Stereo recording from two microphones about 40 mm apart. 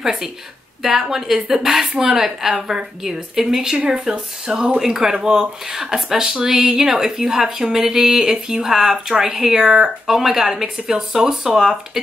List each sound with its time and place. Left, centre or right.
0.0 s a woman's voice: centre